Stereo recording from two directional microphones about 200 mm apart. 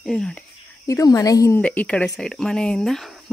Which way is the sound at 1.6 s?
5° left (ahead or behind).